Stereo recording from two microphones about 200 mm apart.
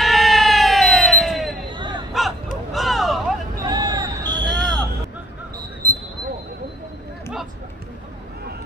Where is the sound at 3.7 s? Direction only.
20° right (ahead or behind).